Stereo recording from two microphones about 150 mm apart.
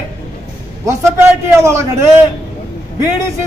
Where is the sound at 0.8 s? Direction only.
20° right (ahead or behind).